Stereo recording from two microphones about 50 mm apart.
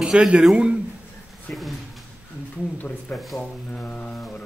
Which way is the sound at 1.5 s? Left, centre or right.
Centre.